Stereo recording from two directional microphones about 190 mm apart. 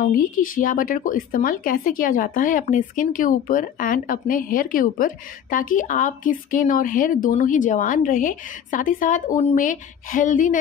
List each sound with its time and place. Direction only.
0.0 s speech: 45° left (ahead or behind)